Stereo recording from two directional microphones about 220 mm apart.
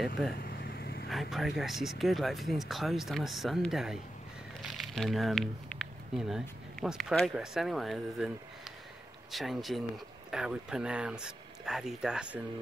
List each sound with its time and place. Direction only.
0.4 s vehicle: 40° left (ahead or behind)
1.0 s speech: centre (ahead or behind)